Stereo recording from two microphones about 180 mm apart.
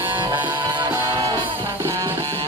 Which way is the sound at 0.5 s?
25° right (ahead or behind).